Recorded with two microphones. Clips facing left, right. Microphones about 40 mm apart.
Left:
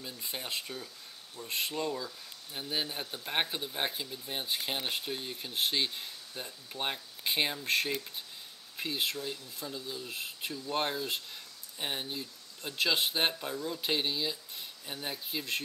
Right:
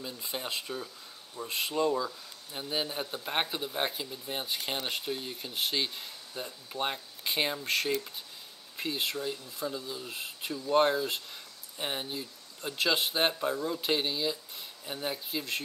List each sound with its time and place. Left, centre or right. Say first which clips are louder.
0.0 s speech: right 3 dB; centre
6.3 s speech: right 5 dB; centre